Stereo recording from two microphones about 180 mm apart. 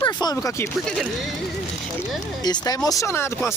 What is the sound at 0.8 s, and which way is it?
Speech, centre (ahead or behind).